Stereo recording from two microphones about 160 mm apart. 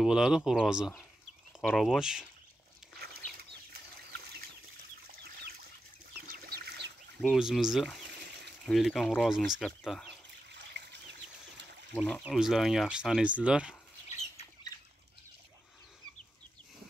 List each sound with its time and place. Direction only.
0.0 s speech: 5° right (ahead or behind)
3.7 s bird flight: 85° right
5.0 s bird: 80° right
7.2 s speech: centre (ahead or behind)
10.8 s trickle: 90° right
11.9 s speech: 5° left (ahead or behind)
14.0 s bird: 45° left (ahead or behind)
14.7 s bird: 20° left (ahead or behind)